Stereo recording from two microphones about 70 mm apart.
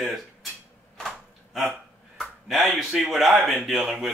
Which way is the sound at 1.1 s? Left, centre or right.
Centre.